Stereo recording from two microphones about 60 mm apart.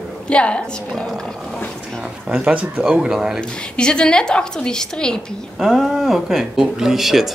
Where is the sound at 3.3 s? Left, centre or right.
Centre.